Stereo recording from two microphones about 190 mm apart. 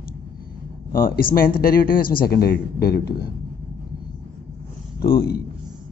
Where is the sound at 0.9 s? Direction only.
50° left (ahead or behind).